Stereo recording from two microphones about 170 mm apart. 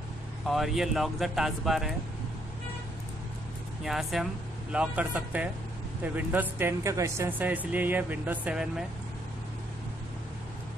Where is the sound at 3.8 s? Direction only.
Centre (ahead or behind).